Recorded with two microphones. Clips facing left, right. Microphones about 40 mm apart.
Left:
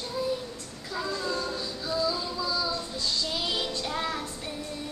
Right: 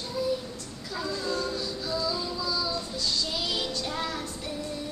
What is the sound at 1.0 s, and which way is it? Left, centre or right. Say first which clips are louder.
Child singing: even; centre.